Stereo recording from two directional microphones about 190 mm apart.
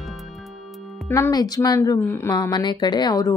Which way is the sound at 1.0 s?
15° left (ahead or behind).